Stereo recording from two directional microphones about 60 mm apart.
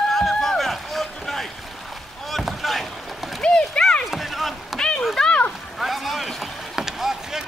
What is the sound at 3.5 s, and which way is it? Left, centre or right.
Clip-clop, centre.